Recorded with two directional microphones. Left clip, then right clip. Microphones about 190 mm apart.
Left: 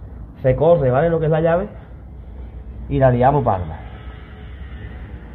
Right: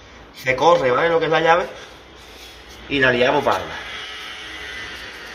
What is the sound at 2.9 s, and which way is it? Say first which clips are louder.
Speech: left 1 dB; 15° left (ahead or behind).